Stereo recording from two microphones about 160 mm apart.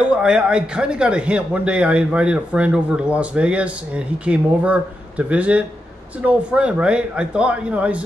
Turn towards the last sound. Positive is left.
turn(degrees=-10)  # may be behind; listen again after turning